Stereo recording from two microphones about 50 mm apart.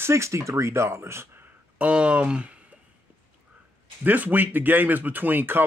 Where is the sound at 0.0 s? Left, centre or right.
Right.